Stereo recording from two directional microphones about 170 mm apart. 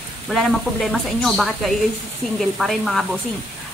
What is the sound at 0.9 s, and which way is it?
Speech, centre (ahead or behind).